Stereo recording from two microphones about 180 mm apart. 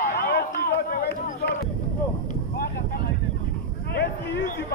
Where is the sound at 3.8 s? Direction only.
65° left (ahead or behind).